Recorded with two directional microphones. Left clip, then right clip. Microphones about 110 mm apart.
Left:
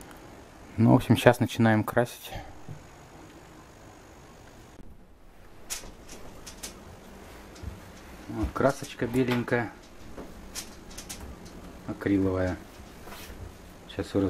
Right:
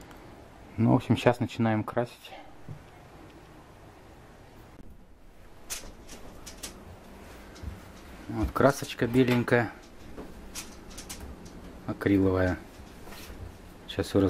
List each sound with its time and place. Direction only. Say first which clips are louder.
0.7 s speech: left 3 dB; 10° left (ahead or behind)
8.5 s speech: right 2 dB; 25° right (ahead or behind)
11.9 s speech: right 2 dB; 25° right (ahead or behind)
13.8 s speech: right 2 dB; 25° right (ahead or behind)